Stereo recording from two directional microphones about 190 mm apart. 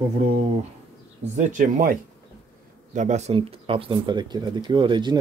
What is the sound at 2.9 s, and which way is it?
Speech, 35° right (ahead or behind).